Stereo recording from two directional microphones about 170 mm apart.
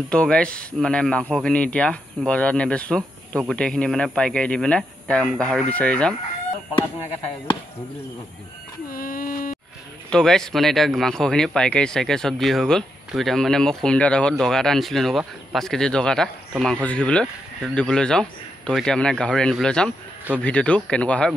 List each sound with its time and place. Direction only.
0.1 s speech: 5° left (ahead or behind)
8.9 s a sound: 55° left (ahead or behind)
10.0 s speech: 5° left (ahead or behind)